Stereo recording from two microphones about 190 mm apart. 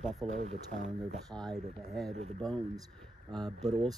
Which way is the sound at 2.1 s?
35° right (ahead or behind).